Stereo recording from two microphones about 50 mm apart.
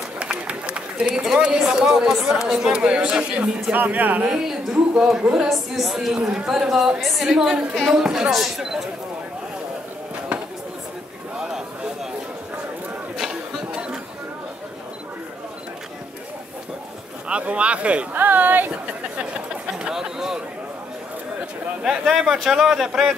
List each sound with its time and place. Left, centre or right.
0.2 s run: right
1.2 s speech: centre
3.7 s speech: right
4.3 s speech: centre
5.5 s speech: centre
7.3 s speech: centre
11.3 s a sound: centre
17.3 s speech: right
18.1 s speech: right
19.9 s speech: centre
21.8 s speech: centre